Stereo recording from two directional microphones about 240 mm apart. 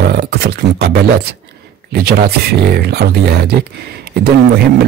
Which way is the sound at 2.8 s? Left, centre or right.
Right.